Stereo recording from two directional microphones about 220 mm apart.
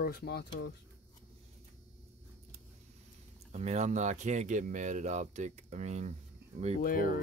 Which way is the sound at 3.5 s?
30° right (ahead or behind).